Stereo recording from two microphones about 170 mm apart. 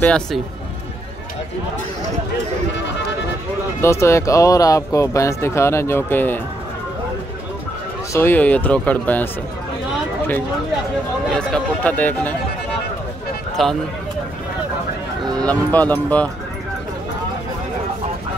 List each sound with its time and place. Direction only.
0.0 s speech: 5° left (ahead or behind)
3.8 s speech: 15° left (ahead or behind)
8.1 s speech: 10° left (ahead or behind)
11.2 s speech: 5° left (ahead or behind)
13.6 s speech: centre (ahead or behind)
15.3 s speech: 10° left (ahead or behind)